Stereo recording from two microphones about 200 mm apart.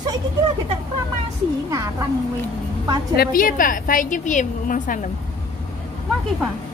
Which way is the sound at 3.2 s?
45° left (ahead or behind).